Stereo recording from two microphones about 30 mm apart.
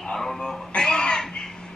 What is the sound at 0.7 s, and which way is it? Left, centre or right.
Speech, left.